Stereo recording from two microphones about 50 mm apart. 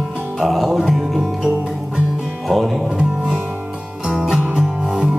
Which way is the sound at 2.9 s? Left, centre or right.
Centre.